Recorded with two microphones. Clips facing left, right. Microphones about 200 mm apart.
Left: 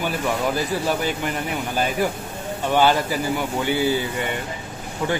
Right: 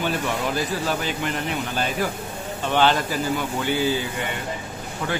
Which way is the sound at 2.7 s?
10° left (ahead or behind).